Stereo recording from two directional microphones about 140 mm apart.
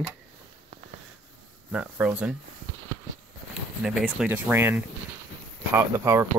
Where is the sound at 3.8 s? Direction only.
5° right (ahead or behind).